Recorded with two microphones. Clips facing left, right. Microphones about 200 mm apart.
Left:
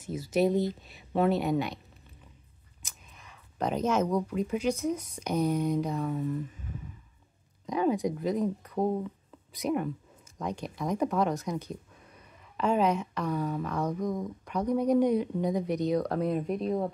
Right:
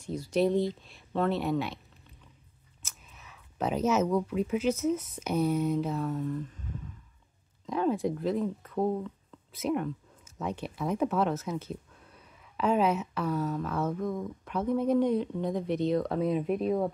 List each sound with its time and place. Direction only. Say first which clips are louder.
0.0 s speech: left 1 dB; 5° left (ahead or behind)
2.8 s a sound: even; 5° right (ahead or behind)
4.3 s speech: right 1 dB; 5° right (ahead or behind)
7.7 s speech: left 1 dB; centre (ahead or behind)
8.7 s a sound: right 1 dB; 15° left (ahead or behind)
9.5 s a sound: even; centre (ahead or behind)
10.4 s speech: even; 5° right (ahead or behind)
12.2 s a sound: even; 5° right (ahead or behind)
13.4 s speech: even; 10° left (ahead or behind)
13.7 s speech: even; 5° right (ahead or behind)
14.0 s speech: left 1 dB; 15° left (ahead or behind)
14.4 s speech: even; centre (ahead or behind)